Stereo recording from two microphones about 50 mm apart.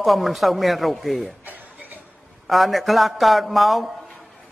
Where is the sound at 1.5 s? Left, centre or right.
Right.